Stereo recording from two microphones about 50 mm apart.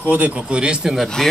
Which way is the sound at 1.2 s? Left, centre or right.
Centre.